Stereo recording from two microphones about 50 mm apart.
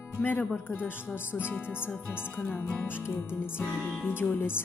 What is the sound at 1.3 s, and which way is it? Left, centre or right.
Speech, left.